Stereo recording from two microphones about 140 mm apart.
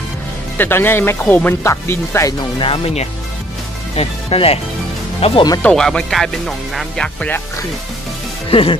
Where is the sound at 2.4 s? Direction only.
40° left (ahead or behind).